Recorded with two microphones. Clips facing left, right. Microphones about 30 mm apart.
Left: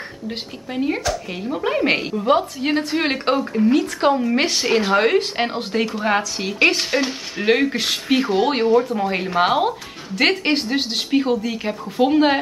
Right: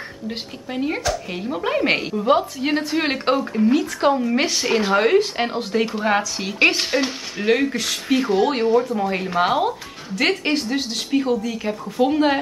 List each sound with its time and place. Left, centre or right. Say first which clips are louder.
0.3 s speech: even; centre
5.9 s speech: even; centre
7.4 s speech: left 1 dB; centre